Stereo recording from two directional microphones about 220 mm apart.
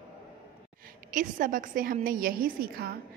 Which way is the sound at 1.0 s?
35° right (ahead or behind).